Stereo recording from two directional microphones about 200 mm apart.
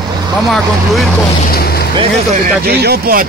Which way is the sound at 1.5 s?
50° left (ahead or behind).